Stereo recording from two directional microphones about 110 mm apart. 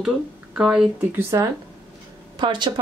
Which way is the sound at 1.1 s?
25° right (ahead or behind).